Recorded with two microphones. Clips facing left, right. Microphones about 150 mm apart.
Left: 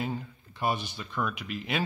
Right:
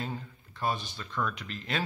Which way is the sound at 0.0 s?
10° left (ahead or behind).